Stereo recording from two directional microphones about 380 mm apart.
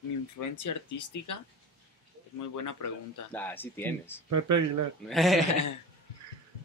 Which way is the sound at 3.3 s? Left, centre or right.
Centre.